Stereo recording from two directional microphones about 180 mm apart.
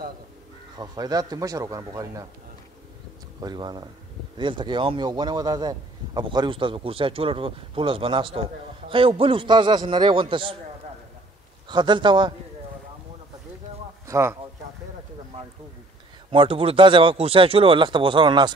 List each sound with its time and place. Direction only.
0.7 s speech: 20° right (ahead or behind)
3.3 s speech: 25° right (ahead or behind)
11.7 s speech: 25° right (ahead or behind)
14.0 s speech: 15° right (ahead or behind)
16.3 s speech: 30° right (ahead or behind)